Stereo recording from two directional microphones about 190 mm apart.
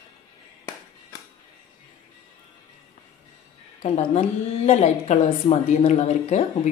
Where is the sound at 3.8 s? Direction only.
35° left (ahead or behind).